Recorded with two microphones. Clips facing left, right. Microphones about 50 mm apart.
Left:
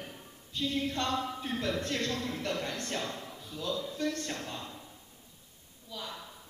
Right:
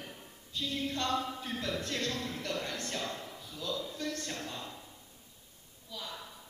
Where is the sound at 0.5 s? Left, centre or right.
Left.